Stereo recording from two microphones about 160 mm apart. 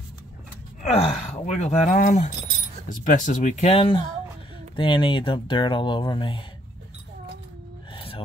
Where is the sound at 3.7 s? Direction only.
30° left (ahead or behind).